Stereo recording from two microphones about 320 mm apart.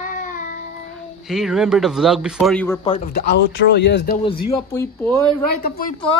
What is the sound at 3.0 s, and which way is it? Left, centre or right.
Speech, left.